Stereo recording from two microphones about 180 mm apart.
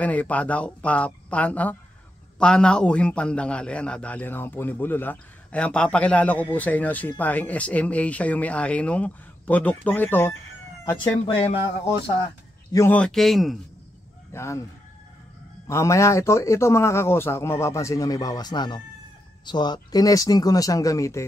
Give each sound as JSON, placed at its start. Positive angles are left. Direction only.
{"t": 0.0, "sound": "a man's voice", "side_deg": 10}
{"t": 11.2, "sound": "speech", "side_deg": 30}
{"t": 12.7, "sound": "a man's voice", "side_deg": 10}
{"t": 14.3, "sound": "speech", "side_deg": 15}
{"t": 15.7, "sound": "a man's voice", "side_deg": 15}